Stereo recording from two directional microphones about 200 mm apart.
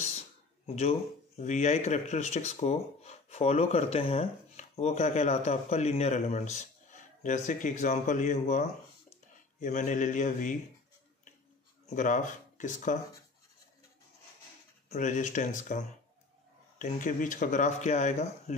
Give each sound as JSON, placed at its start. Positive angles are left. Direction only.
{"t": 0.7, "sound": "speech", "side_deg": 30}
{"t": 11.8, "sound": "speech", "side_deg": 40}
{"t": 14.9, "sound": "speech", "side_deg": 40}